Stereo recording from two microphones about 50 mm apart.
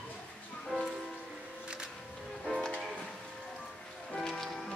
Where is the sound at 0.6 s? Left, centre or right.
Centre.